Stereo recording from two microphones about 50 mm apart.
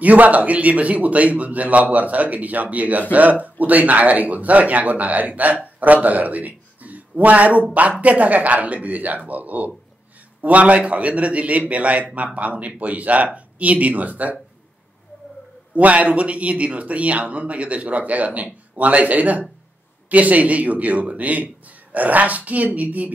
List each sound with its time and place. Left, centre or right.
0.0 s a man's voice: right
15.7 s a man's voice: right